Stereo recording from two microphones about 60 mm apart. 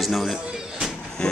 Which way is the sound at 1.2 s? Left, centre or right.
Centre.